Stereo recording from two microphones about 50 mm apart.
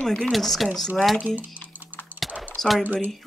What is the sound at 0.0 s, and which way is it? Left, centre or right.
Speech, centre.